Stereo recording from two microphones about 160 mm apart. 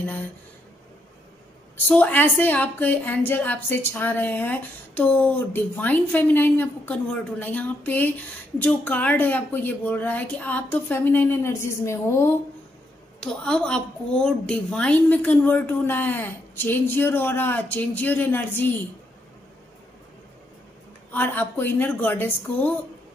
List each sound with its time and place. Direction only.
1.9 s a woman's voice: 10° left (ahead or behind)
13.2 s a woman's voice: 5° left (ahead or behind)
21.1 s a woman's voice: 10° left (ahead or behind)